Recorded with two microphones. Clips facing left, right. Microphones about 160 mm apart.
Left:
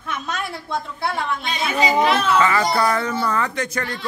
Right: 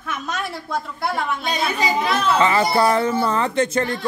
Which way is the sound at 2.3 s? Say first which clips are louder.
Right 1 dB; 25° right (ahead or behind).